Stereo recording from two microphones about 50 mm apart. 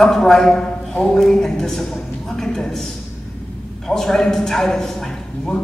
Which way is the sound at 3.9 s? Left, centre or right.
Centre.